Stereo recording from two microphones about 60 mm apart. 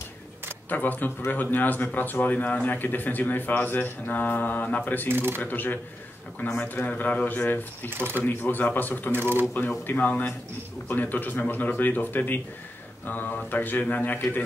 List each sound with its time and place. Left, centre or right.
0.7 s a man's voice: left
5.0 s speech: right
5.4 s a man's voice: left
7.9 s speech: right
8.2 s a man's voice: left
9.1 s speech: right
9.5 s a man's voice: left